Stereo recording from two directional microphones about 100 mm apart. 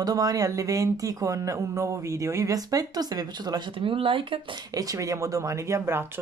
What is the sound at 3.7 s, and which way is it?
Speech, 60° right (ahead or behind).